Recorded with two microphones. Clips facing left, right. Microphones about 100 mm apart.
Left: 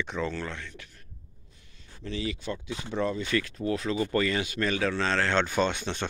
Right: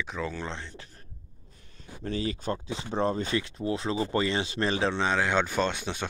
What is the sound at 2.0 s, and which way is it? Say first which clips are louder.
Speech: right 2 dB; 40° right (ahead or behind).